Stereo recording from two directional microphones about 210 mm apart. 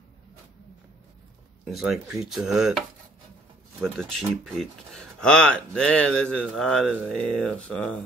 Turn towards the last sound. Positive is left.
turn(degrees=5)  # may be behind; listen again after turning